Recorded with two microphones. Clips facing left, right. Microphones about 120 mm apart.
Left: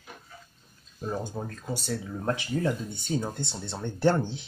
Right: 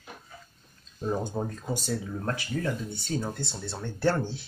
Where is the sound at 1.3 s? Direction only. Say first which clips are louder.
Right 3 dB; 25° right (ahead or behind).